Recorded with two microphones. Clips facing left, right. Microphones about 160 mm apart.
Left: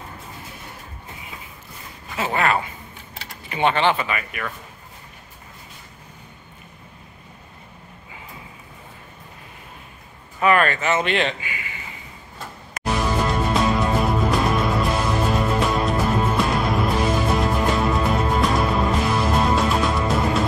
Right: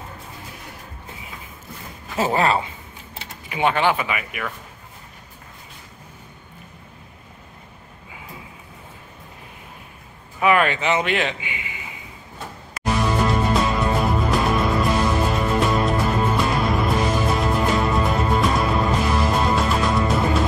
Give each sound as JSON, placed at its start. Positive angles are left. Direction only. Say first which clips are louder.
{"t": 2.1, "sound": "a woman's voice", "louder": "right 2 dB", "side_deg": -35}
{"t": 3.4, "sound": "speech", "louder": "even", "side_deg": -10}
{"t": 10.4, "sound": "speech", "louder": "even", "side_deg": -10}
{"t": 11.4, "sound": "a sound", "louder": "right 1 dB", "side_deg": -20}
{"t": 12.8, "sound": "music", "louder": "right 1 dB", "side_deg": 0}